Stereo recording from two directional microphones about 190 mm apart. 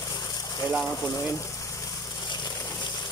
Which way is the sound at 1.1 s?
15° left (ahead or behind).